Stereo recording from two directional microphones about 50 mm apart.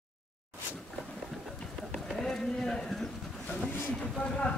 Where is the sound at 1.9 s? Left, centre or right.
Centre.